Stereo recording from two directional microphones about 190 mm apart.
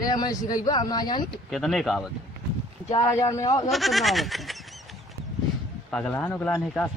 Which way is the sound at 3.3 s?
20° left (ahead or behind).